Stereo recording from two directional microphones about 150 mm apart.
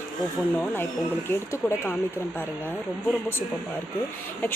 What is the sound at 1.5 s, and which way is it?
Speech, 15° left (ahead or behind).